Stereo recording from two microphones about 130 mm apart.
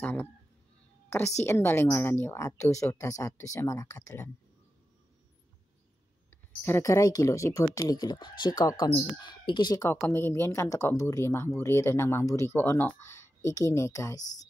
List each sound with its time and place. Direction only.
0.0 s speech: 15° left (ahead or behind)
1.4 s speech: 20° left (ahead or behind)
6.3 s speech: 20° left (ahead or behind); by 9.8 s 35° left (ahead or behind)
9.8 s speech: 20° left (ahead or behind)